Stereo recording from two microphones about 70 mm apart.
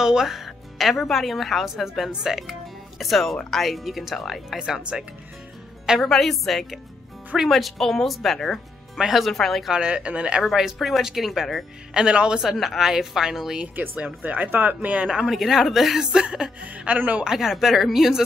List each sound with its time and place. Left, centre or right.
0.0 s a woman's voice: centre
6.0 s a woman's voice: centre
9.7 s a woman's voice: centre
10.4 s a woman's voice: centre
11.9 s a woman's voice: centre
13.7 s speech: right
15.0 s a woman's voice: centre; by 17.2 s right
17.2 s a woman's voice: centre